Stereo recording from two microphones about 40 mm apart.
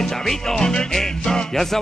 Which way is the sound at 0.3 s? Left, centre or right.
Centre.